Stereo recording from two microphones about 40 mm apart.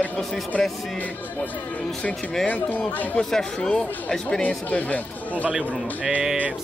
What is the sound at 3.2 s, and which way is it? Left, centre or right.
Speech, centre.